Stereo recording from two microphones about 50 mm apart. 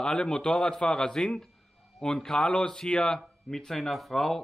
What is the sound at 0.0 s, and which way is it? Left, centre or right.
A man's voice, centre.